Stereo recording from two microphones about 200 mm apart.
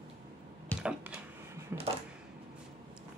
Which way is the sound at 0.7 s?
5° right (ahead or behind).